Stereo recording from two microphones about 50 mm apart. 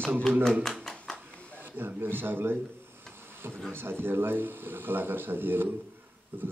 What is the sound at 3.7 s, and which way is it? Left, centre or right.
Speech, right.